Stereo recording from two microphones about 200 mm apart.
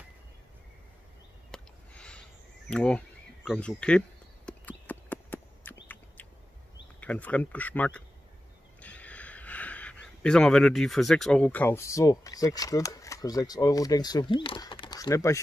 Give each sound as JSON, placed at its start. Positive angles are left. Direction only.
{"t": 1.5, "sound": "a sound", "side_deg": 5}
{"t": 2.7, "sound": "speech", "side_deg": 5}
{"t": 4.5, "sound": "clip-clop", "side_deg": 10}
{"t": 7.0, "sound": "speech", "side_deg": 5}